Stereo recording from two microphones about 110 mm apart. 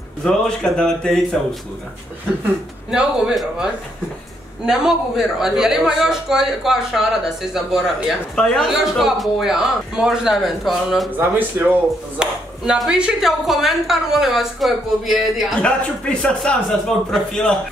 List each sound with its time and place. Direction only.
0.2 s a man's voice: 5° left (ahead or behind)
2.9 s a man's voice: 5° right (ahead or behind)
11.1 s a man's voice: 15° right (ahead or behind)
15.6 s speech: 10° left (ahead or behind)